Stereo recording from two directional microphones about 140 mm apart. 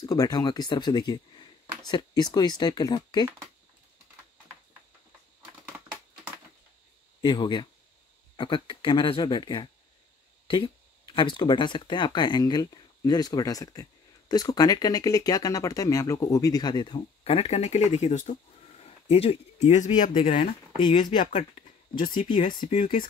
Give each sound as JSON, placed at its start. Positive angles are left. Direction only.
{"t": 0.0, "sound": "speech", "side_deg": 25}
{"t": 7.2, "sound": "speech", "side_deg": 30}
{"t": 18.8, "sound": "speech", "side_deg": 45}
{"t": 20.2, "sound": "speech", "side_deg": 75}
{"t": 20.8, "sound": "speech", "side_deg": 35}
{"t": 21.3, "sound": "speech", "side_deg": 55}